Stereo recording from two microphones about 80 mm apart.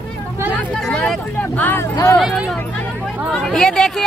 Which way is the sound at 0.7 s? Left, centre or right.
Centre.